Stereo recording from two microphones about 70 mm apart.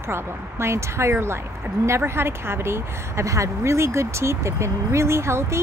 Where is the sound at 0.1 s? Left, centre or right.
Right.